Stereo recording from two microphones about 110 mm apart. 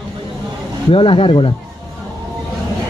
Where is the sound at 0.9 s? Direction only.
55° left (ahead or behind).